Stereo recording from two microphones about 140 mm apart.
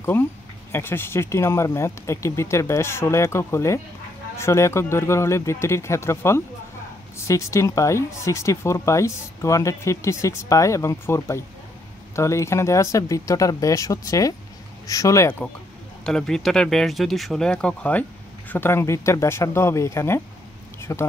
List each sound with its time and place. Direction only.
0.0 s speech: 15° left (ahead or behind)
16.0 s speech: 5° left (ahead or behind); by 21.1 s 20° left (ahead or behind)